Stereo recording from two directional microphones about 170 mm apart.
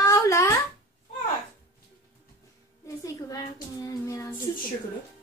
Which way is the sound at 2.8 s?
20° left (ahead or behind).